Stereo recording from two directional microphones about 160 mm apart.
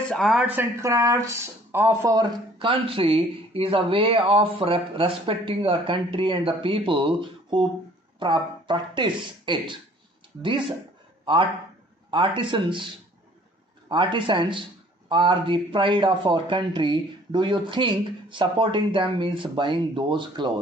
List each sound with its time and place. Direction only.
0.1 s speech: centre (ahead or behind)
0.5 s speech: 15° right (ahead or behind)
2.7 s a man's voice: 35° right (ahead or behind)
12.1 s a man's voice: 30° right (ahead or behind)